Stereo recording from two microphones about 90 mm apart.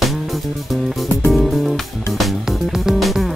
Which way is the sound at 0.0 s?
Centre (ahead or behind).